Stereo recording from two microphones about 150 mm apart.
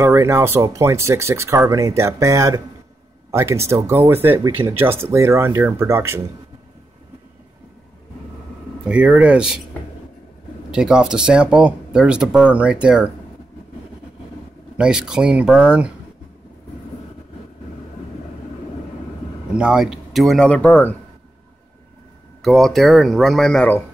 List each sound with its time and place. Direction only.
0.0 s speech: 20° right (ahead or behind)
8.8 s speech: 10° right (ahead or behind)
10.7 s speech: 5° right (ahead or behind)
14.8 s speech: 5° right (ahead or behind)
19.5 s speech: 5° right (ahead or behind); by 20.9 s 10° left (ahead or behind)
22.4 s speech: centre (ahead or behind)